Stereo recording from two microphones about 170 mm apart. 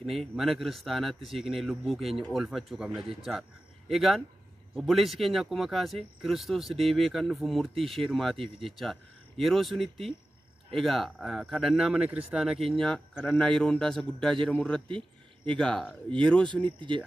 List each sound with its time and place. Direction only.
0.0 s speech: centre (ahead or behind)
16.6 s speech: 30° right (ahead or behind)